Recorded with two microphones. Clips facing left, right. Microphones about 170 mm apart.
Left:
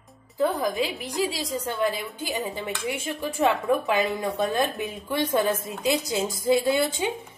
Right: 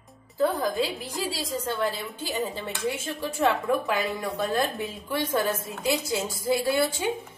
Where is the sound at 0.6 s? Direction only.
15° left (ahead or behind).